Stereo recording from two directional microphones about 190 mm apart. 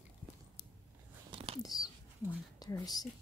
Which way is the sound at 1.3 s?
30° right (ahead or behind).